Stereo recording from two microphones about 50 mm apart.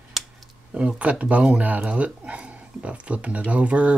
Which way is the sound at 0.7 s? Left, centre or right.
Right.